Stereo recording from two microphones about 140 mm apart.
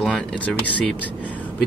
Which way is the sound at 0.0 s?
5° left (ahead or behind).